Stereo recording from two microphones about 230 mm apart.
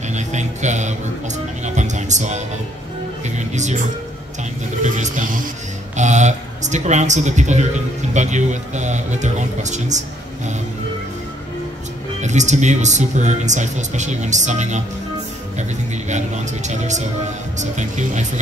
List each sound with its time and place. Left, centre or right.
0.1 s music: right
4.8 s speech: right
12.2 s speech: right
16.1 s speech: right